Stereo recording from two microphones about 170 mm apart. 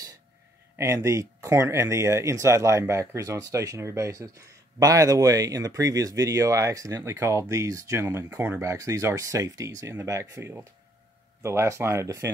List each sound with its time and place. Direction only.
0.7 s speech: 15° right (ahead or behind)